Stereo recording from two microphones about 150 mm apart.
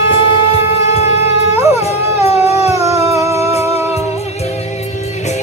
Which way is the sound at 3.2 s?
20° right (ahead or behind).